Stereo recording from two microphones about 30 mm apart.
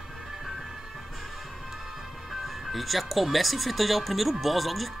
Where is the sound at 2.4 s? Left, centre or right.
Centre.